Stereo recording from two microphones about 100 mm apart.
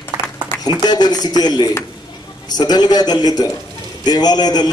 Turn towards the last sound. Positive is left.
turn(degrees=45)  # may be behind; listen again after turning